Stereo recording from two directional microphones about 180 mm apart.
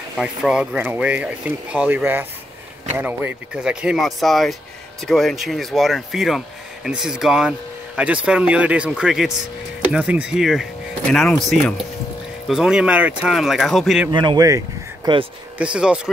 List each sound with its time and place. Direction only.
0.1 s speech: 5° right (ahead or behind)
14.1 s speech: 25° right (ahead or behind)
15.5 s speech: 5° right (ahead or behind)